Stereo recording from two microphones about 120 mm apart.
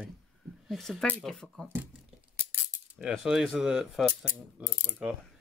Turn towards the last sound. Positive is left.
turn(degrees=-10)  # may be behind; listen again after turning